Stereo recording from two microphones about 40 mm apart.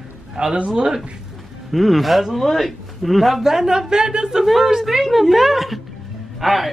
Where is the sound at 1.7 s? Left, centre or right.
Centre.